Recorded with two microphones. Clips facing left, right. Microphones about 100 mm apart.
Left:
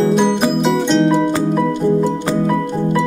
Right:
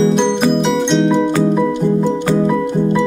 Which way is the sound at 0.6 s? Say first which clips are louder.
Even; centre (ahead or behind).